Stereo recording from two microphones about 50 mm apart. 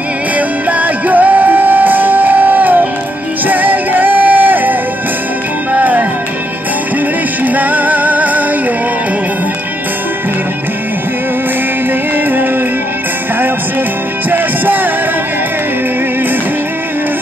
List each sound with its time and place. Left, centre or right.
0.4 s music: right
7.4 s music: right
14.3 s music: right